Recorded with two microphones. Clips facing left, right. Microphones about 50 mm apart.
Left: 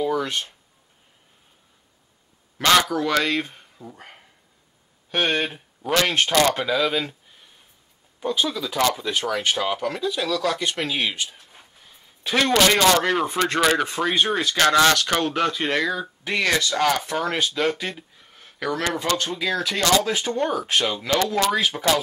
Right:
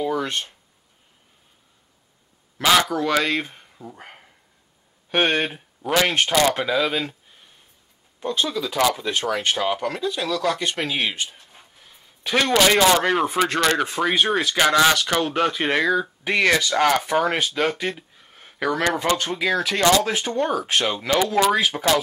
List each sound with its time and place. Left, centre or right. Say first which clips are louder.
0.0 s speech: even; centre
2.6 s speech: even; centre
11.3 s a sound: even; centre
12.3 s speech: right 1 dB; centre
15.3 s speech: right 2 dB; centre
18.3 s a sound: right 4 dB; centre
18.9 s speech: right 2 dB; right